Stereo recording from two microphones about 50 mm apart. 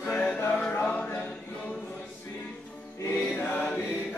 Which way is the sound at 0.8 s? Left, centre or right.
Left.